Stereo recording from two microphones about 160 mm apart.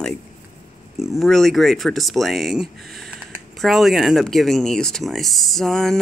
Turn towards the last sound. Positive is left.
turn(degrees=0)  # may be behind; listen again after turning